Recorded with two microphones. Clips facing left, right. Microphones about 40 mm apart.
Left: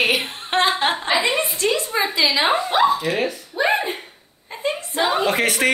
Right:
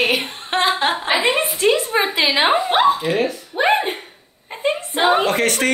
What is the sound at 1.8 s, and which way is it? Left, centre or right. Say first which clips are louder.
Speech: right 2 dB; right.